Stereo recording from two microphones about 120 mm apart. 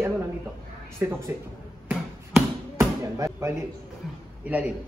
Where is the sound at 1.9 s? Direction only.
20° right (ahead or behind).